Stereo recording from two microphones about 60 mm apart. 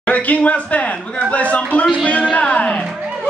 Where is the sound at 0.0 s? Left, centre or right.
Left.